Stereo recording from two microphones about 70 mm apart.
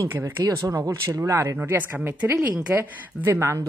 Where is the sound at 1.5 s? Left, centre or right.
Right.